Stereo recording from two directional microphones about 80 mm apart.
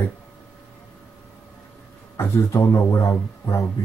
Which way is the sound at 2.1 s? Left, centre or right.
Left.